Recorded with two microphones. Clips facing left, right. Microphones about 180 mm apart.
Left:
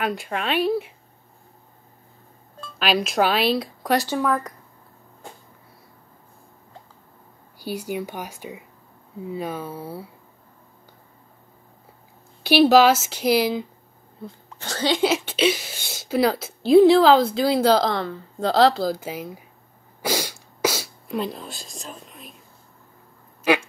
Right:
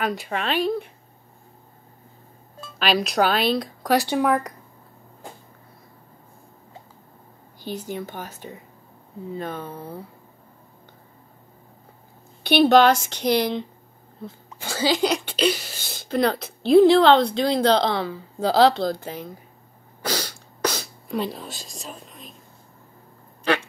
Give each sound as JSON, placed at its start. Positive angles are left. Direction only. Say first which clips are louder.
{"t": 0.0, "sound": "speech", "louder": "even", "side_deg": 0}
{"t": 2.6, "sound": "speech", "louder": "even", "side_deg": 0}
{"t": 4.0, "sound": "speech", "louder": "right 2 dB", "side_deg": -15}
{"t": 7.5, "sound": "speech", "louder": "left 2 dB", "side_deg": 10}
{"t": 12.4, "sound": "speech", "louder": "left 1 dB", "side_deg": 0}
{"t": 14.2, "sound": "speech", "louder": "right 1 dB", "side_deg": -10}
{"t": 20.0, "sound": "a sound", "louder": "left 2 dB", "side_deg": 10}
{"t": 23.5, "sound": "speech", "louder": "left 3 dB", "side_deg": 10}